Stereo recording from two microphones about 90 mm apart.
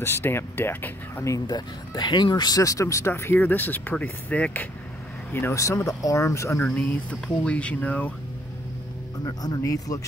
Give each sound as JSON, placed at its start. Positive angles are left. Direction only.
{"t": 0.0, "sound": "speech", "side_deg": 25}
{"t": 1.5, "sound": "speech", "side_deg": 50}
{"t": 5.3, "sound": "speech", "side_deg": 30}
{"t": 6.6, "sound": "speech", "side_deg": 15}
{"t": 9.2, "sound": "speech", "side_deg": 50}
{"t": 9.6, "sound": "speech", "side_deg": 40}